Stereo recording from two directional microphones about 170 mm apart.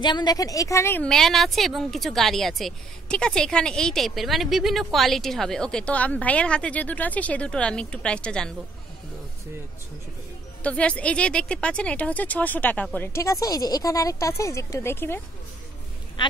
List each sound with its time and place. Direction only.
0.0 s a woman's voice: 25° left (ahead or behind)
1.0 s speech: centre (ahead or behind)
10.6 s speech: 5° left (ahead or behind)
16.2 s speech: 25° left (ahead or behind)